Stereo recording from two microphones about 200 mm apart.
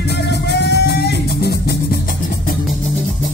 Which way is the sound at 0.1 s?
55° left (ahead or behind).